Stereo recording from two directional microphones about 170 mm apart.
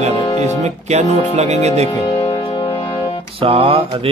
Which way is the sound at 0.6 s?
40° right (ahead or behind).